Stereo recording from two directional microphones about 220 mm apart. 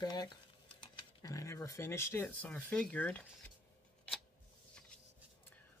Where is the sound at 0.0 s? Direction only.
20° left (ahead or behind).